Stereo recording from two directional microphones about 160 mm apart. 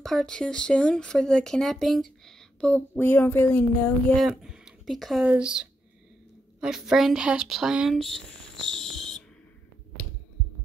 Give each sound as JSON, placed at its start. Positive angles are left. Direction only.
{"t": 0.0, "sound": "speech", "side_deg": 5}
{"t": 4.2, "sound": "speech", "side_deg": 0}